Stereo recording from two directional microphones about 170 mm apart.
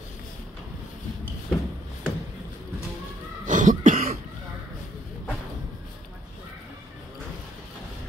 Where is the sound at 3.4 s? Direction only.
45° right (ahead or behind).